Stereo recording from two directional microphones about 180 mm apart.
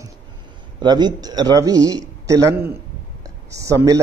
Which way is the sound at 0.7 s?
25° right (ahead or behind).